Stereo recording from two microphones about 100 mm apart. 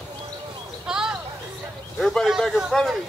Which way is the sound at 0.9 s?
5° right (ahead or behind).